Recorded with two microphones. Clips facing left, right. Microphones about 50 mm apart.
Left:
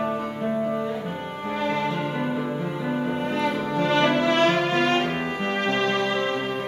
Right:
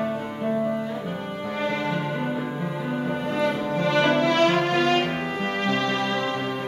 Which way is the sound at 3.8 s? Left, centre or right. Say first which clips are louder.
Even; left.